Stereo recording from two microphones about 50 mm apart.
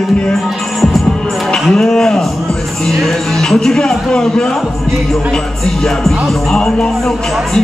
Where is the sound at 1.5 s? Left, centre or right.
Centre.